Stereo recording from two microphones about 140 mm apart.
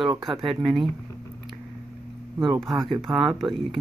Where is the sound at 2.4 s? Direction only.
Centre (ahead or behind).